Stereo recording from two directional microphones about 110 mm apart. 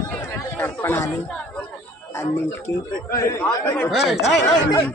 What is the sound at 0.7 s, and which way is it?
Speech, 20° left (ahead or behind).